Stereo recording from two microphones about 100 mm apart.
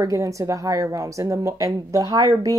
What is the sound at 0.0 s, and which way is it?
Speech, 30° right (ahead or behind).